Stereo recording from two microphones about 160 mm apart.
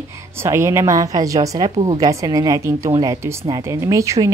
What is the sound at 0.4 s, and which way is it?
A woman's voice, 15° right (ahead or behind).